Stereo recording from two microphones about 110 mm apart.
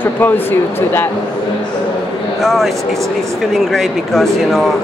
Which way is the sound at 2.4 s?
Centre (ahead or behind).